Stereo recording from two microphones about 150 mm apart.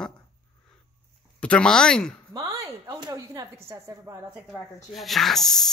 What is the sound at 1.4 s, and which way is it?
Speech, 5° left (ahead or behind).